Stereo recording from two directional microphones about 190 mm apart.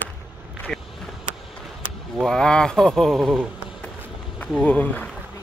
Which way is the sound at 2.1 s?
Centre (ahead or behind).